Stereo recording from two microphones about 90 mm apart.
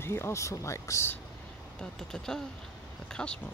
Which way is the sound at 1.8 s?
5° left (ahead or behind).